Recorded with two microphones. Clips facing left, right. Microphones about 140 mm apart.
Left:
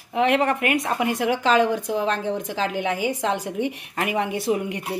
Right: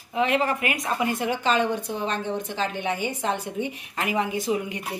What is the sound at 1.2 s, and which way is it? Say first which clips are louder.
A woman's voice: left 7 dB; 90° left.